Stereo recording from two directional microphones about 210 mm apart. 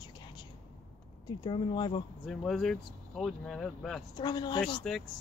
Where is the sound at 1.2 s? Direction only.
20° left (ahead or behind).